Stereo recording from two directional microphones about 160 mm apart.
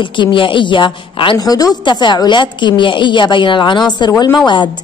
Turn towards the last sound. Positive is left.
turn(degrees=30)  # may be behind; listen again after turning